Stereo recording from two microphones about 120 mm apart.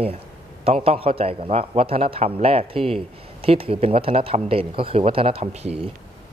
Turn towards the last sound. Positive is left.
turn(degrees=-60)  # may be behind; listen again after turning